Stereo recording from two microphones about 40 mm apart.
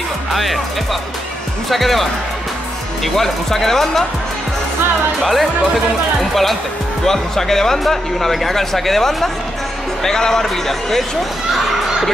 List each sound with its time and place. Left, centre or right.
0.3 s speech: centre
1.7 s speech: centre
5.2 s speech: centre